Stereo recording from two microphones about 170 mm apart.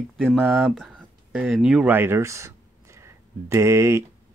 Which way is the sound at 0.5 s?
5° left (ahead or behind).